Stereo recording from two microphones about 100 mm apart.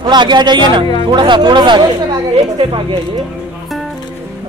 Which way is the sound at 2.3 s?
70° right (ahead or behind).